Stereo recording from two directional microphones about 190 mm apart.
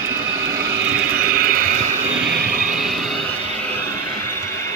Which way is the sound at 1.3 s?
50° right (ahead or behind).